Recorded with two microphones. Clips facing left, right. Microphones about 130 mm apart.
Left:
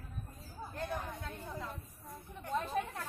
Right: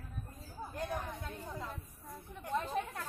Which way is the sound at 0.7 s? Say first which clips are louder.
Even; 10° right (ahead or behind).